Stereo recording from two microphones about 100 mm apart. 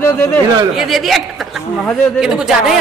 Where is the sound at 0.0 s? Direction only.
20° left (ahead or behind).